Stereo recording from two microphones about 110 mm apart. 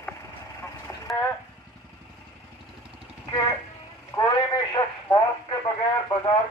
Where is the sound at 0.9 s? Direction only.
25° left (ahead or behind).